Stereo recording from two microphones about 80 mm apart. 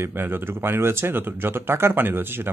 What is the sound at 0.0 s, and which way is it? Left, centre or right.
Speech, right.